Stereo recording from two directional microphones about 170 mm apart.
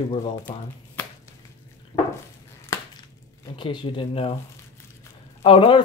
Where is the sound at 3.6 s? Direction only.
30° left (ahead or behind).